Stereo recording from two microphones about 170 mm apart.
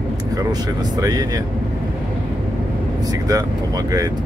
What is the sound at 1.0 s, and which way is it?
Speech, 20° right (ahead or behind).